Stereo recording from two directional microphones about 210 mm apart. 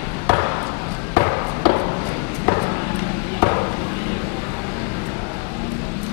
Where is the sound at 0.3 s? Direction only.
15° left (ahead or behind).